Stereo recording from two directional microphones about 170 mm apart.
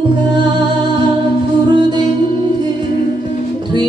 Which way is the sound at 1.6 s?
25° right (ahead or behind).